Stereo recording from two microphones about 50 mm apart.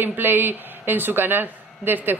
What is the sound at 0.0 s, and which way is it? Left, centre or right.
A woman's voice, right.